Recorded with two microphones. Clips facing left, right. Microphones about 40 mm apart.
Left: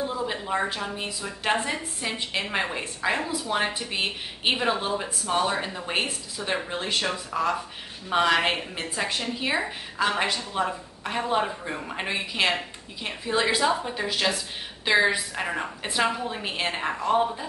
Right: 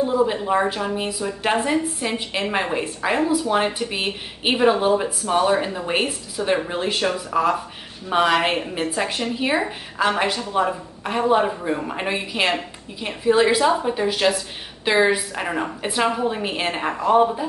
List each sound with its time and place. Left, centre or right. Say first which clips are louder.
0.3 s a woman's voice: right 7 dB; centre
4.6 s speech: right 9 dB; centre
5.3 s a woman's voice: right 6 dB; centre